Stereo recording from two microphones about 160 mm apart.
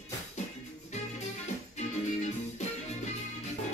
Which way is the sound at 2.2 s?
45° left (ahead or behind).